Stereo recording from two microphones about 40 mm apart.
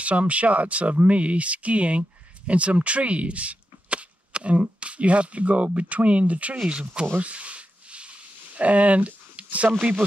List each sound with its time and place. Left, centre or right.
0.0 s speech: right
6.7 s speech: right
7.2 s a sound: right
8.5 s a man's voice: right